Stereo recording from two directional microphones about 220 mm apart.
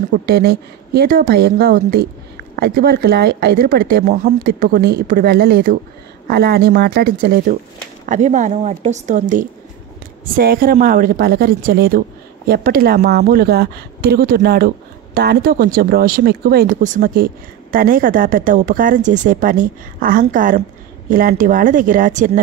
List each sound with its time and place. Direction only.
0.1 s speech: 45° right (ahead or behind)